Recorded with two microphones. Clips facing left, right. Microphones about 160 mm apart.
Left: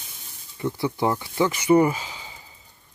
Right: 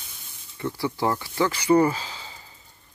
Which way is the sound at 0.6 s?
15° left (ahead or behind).